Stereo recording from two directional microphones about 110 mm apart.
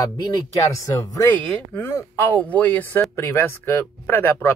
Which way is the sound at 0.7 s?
30° left (ahead or behind).